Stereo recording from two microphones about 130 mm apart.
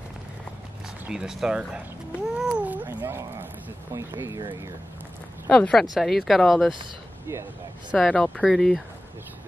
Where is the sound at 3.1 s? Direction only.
20° right (ahead or behind).